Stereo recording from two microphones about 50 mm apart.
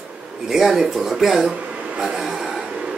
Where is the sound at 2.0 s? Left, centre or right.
Centre.